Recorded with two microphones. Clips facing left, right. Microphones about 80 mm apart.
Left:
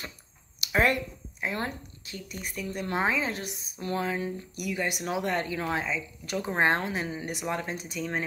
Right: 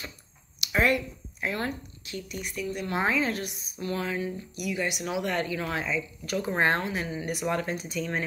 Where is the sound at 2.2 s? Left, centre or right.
Left.